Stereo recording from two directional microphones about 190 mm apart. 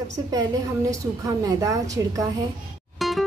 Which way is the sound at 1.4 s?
15° right (ahead or behind).